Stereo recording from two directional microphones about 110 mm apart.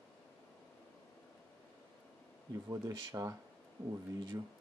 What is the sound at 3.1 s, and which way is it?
Speech, 30° right (ahead or behind).